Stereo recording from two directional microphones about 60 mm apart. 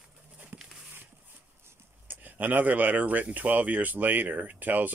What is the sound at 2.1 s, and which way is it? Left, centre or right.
Speech, right.